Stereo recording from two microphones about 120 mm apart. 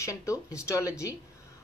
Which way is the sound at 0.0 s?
25° left (ahead or behind).